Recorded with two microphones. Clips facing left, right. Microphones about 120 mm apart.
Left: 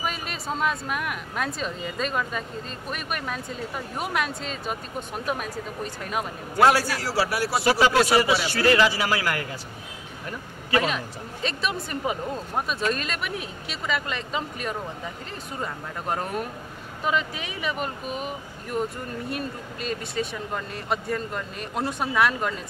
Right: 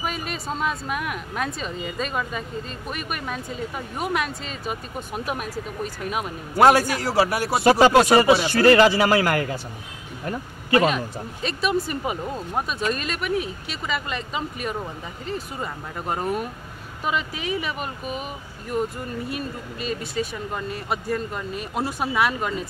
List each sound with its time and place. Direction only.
0.0 s speech: centre (ahead or behind)
6.7 s a man's voice: 20° right (ahead or behind)
7.6 s a man's voice: 45° right (ahead or behind)
9.1 s a man's voice: 35° right (ahead or behind)
10.8 s speech: 5° right (ahead or behind)